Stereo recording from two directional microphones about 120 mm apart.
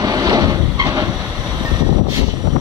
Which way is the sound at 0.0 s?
30° right (ahead or behind).